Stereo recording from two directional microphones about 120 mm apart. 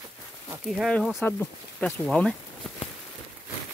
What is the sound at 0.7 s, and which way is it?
Speech, centre (ahead or behind).